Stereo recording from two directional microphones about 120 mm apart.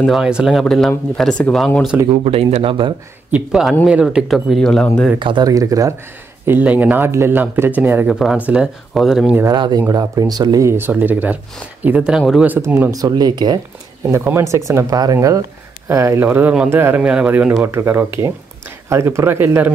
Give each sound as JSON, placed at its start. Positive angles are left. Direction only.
{"t": 0.1, "sound": "speech", "side_deg": -5}
{"t": 2.0, "sound": "speech", "side_deg": -55}
{"t": 3.3, "sound": "speech", "side_deg": -10}
{"t": 5.2, "sound": "speech", "side_deg": -35}
{"t": 6.4, "sound": "speech", "side_deg": -15}
{"t": 8.1, "sound": "speech", "side_deg": -5}
{"t": 9.5, "sound": "speech", "side_deg": -35}
{"t": 12.2, "sound": "speech", "side_deg": 0}
{"t": 12.4, "sound": "speech", "side_deg": -20}
{"t": 14.0, "sound": "speech", "side_deg": -20}
{"t": 16.3, "sound": "speech", "side_deg": -15}